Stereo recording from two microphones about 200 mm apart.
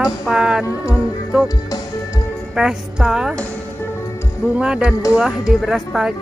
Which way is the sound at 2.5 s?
5° right (ahead or behind).